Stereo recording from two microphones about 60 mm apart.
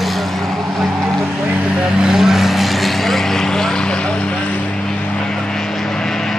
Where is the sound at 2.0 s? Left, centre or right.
Centre.